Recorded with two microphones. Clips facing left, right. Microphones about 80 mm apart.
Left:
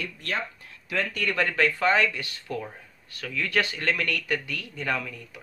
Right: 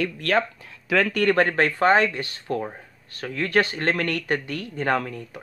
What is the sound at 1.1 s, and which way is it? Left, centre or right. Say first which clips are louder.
Speech: right 4 dB; right.